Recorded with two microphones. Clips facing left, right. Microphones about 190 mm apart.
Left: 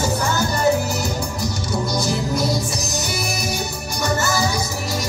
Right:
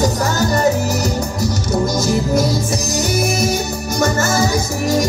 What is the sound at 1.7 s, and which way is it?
Music, 45° right (ahead or behind).